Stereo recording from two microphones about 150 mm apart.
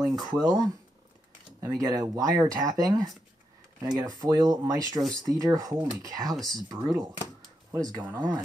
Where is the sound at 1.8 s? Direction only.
20° right (ahead or behind).